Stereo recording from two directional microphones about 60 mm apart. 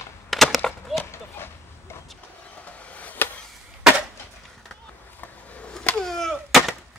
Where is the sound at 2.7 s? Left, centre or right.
Left.